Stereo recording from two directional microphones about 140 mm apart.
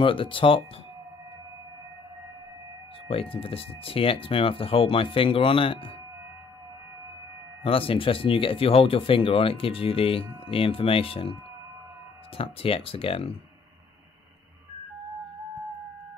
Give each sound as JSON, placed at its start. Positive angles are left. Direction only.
{"t": 0.0, "sound": "speech", "side_deg": 40}
{"t": 3.1, "sound": "speech", "side_deg": 40}
{"t": 7.6, "sound": "speech", "side_deg": 40}
{"t": 12.4, "sound": "speech", "side_deg": 40}